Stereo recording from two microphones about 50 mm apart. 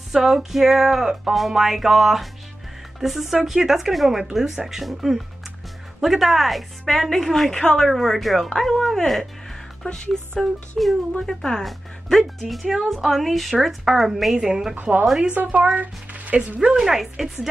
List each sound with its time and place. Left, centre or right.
0.1 s speech: centre
7.9 s speech: centre
10.4 s speech: centre
11.6 s speech: centre
14.3 s speech: centre
14.8 s a woman's voice: right
15.1 s speech: centre
16.5 s speech: centre